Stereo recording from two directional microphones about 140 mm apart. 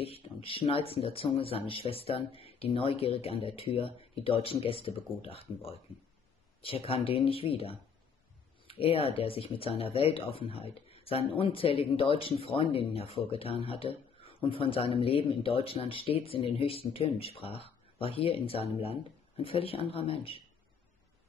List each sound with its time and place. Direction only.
0.0 s speech: 40° left (ahead or behind)